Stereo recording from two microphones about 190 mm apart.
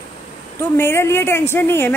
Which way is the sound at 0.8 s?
10° left (ahead or behind).